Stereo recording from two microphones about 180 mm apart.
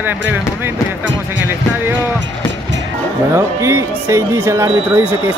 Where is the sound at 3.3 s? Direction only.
15° right (ahead or behind).